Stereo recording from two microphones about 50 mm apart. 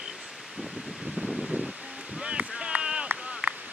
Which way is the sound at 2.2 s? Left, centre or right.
Centre.